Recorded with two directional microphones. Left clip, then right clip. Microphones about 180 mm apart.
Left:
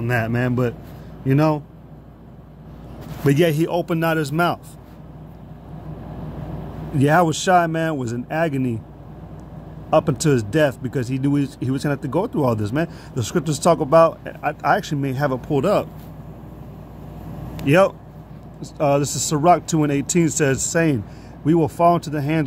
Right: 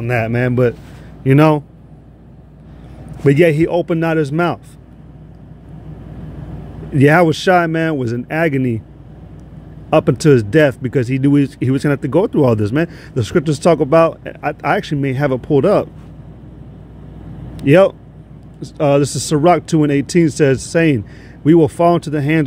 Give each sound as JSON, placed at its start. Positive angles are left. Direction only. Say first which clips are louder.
{"t": 0.0, "sound": "speech", "louder": "right 5 dB", "side_deg": -20}
{"t": 1.2, "sound": "a man's voice", "louder": "right 7 dB", "side_deg": -35}
{"t": 3.3, "sound": "speech", "louder": "right 6 dB", "side_deg": -25}
{"t": 7.0, "sound": "speech", "louder": "right 6 dB", "side_deg": -25}
{"t": 9.8, "sound": "speech", "louder": "right 6 dB", "side_deg": -30}
{"t": 17.6, "sound": "speech", "louder": "right 6 dB", "side_deg": -25}